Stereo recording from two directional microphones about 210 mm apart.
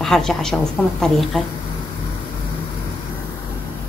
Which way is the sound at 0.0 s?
Centre (ahead or behind).